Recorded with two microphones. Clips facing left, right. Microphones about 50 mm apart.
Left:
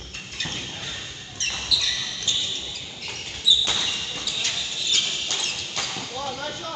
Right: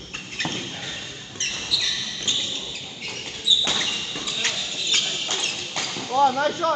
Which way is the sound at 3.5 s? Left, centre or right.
Right.